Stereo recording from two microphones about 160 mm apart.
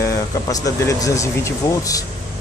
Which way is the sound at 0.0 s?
20° left (ahead or behind).